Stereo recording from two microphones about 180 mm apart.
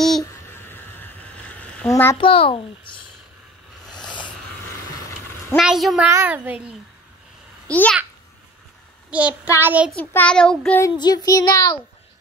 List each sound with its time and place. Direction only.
0.5 s a sound: 10° left (ahead or behind)
2.1 s child singing: 30° left (ahead or behind)
5.6 s child singing: centre (ahead or behind)
6.0 s a woman's voice: 10° right (ahead or behind)
7.7 s a child's voice: 10° left (ahead or behind)
9.1 s a woman's voice: 5° right (ahead or behind)
9.9 s child singing: 5° left (ahead or behind)
10.8 s child singing: 25° left (ahead or behind)